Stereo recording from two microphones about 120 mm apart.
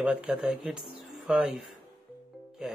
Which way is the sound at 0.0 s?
5° right (ahead or behind).